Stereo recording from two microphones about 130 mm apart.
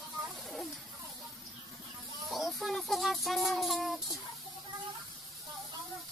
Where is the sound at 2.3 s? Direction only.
Centre (ahead or behind).